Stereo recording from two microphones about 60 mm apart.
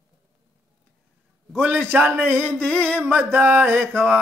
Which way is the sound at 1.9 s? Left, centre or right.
Right.